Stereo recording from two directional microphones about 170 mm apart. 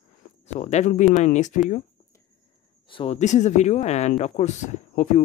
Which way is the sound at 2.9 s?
30° left (ahead or behind).